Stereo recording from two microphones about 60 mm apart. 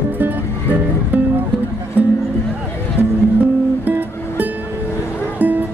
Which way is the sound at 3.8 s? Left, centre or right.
Right.